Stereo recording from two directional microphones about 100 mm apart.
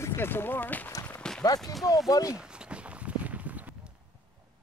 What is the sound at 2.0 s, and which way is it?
Speech, 35° left (ahead or behind).